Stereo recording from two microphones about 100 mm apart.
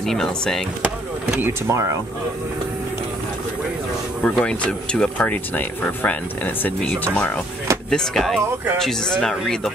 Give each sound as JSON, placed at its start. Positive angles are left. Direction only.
{"t": 0.0, "sound": "speech", "side_deg": 5}
{"t": 0.8, "sound": "speech", "side_deg": -15}
{"t": 1.7, "sound": "speech", "side_deg": -30}
{"t": 4.2, "sound": "speech", "side_deg": 10}
{"t": 7.9, "sound": "speech", "side_deg": 5}